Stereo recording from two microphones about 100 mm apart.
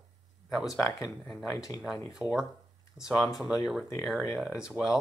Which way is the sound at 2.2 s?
10° right (ahead or behind).